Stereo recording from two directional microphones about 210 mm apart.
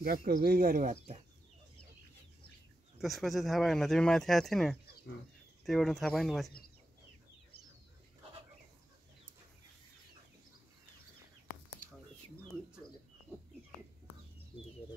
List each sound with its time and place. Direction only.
0.0 s speech: 45° right (ahead or behind)
3.0 s speech: centre (ahead or behind)